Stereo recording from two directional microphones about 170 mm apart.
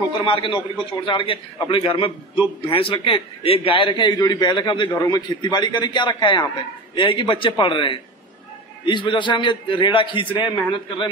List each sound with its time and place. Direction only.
0.2 s a man's voice: 30° left (ahead or behind)